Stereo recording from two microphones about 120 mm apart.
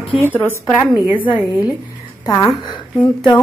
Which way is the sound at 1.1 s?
45° left (ahead or behind).